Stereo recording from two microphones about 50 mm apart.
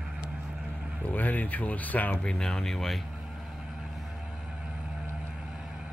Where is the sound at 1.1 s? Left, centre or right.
Left.